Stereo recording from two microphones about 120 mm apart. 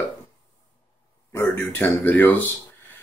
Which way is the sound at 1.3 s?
20° left (ahead or behind).